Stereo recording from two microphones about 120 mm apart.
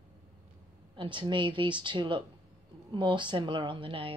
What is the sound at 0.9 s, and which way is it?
A woman's voice, 40° right (ahead or behind).